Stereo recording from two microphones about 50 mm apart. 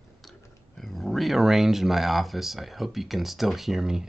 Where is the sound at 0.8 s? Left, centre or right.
Centre.